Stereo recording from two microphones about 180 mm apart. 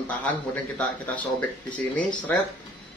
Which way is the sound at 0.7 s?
10° left (ahead or behind).